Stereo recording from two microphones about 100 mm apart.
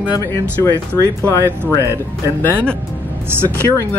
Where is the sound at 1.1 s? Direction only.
25° right (ahead or behind).